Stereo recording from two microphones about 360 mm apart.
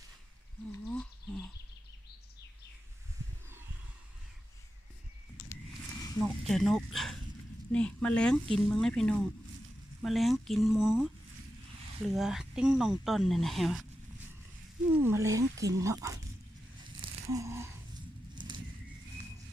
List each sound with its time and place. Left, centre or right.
5.4 s a sound: left
6.2 s speech: centre
12.1 s speech: centre
15.0 s speech: centre
17.3 s a sound: centre
18.3 s bird: centre